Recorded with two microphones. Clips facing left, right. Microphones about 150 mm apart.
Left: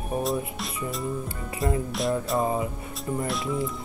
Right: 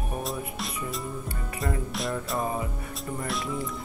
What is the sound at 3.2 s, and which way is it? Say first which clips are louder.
Speech: left 3 dB; centre (ahead or behind).